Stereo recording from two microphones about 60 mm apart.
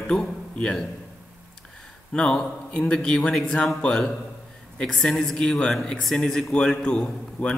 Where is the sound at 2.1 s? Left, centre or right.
Centre.